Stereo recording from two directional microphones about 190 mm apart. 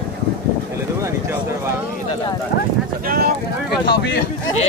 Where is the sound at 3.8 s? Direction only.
55° left (ahead or behind).